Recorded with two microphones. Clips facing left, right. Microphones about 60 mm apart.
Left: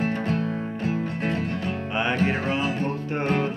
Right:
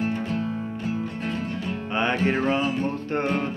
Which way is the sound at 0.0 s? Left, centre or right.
Left.